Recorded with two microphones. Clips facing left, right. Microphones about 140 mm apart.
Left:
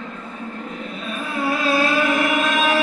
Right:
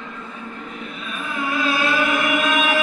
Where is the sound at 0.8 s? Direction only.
35° left (ahead or behind).